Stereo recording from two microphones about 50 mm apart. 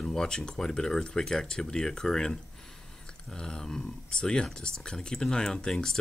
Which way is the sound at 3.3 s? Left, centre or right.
Centre.